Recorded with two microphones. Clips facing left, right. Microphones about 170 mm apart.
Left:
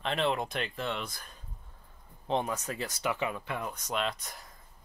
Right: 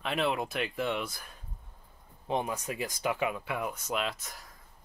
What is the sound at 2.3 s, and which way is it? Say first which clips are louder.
Speech: left 1 dB; 15° right (ahead or behind).